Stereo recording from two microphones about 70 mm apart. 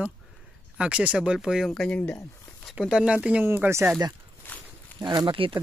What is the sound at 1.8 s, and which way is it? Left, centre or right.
Speech, centre.